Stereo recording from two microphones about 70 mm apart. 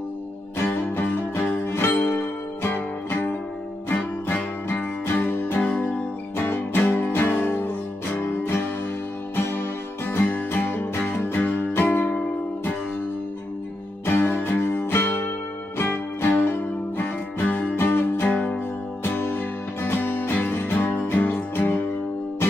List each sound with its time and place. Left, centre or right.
1.7 s music: left
14.0 s music: left
15.9 s music: left
16.5 s music: left
18.3 s music: centre
19.1 s music: left